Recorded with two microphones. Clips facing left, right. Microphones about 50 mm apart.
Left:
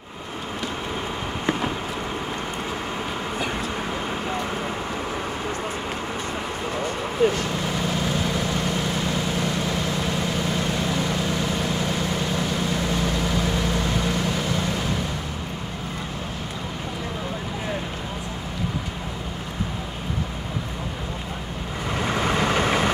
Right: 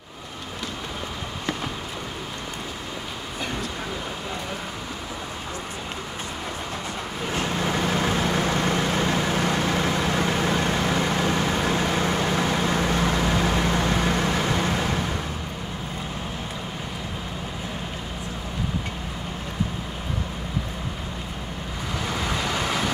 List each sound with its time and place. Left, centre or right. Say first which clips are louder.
1.4 s a sound: left 5 dB; left
7.6 s vehicle: right 2 dB; right
22.0 s vehicle: left 5 dB; left